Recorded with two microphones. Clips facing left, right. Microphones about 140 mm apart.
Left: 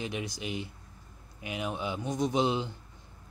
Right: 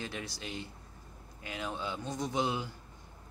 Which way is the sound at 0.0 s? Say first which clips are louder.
Left 5 dB; 15° left (ahead or behind).